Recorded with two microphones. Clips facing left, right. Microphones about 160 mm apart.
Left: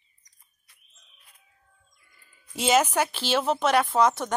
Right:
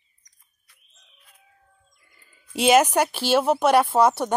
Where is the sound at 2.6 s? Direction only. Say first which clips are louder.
Right 5 dB; 10° right (ahead or behind).